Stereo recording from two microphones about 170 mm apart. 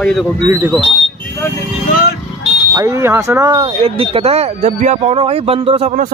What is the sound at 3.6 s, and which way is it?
Speech, 35° right (ahead or behind).